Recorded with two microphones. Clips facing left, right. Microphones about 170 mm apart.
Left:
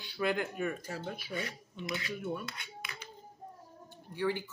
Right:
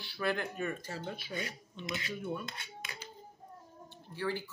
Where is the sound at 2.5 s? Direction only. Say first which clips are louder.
Even; 30° right (ahead or behind).